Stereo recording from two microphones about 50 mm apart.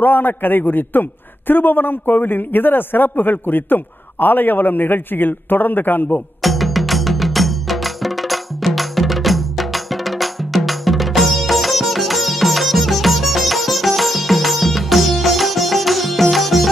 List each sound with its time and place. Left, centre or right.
0.0 s a man's voice: left
6.4 s music: centre